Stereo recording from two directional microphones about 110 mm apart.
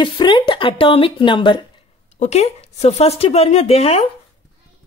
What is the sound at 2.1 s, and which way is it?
Speech, 85° left.